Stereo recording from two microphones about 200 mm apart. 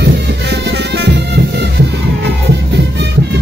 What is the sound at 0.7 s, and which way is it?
Music, 60° right (ahead or behind).